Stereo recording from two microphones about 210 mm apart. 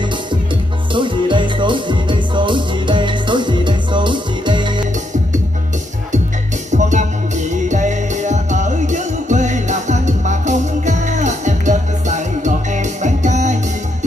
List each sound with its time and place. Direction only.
0.9 s music: 25° right (ahead or behind)
6.7 s music: 35° right (ahead or behind)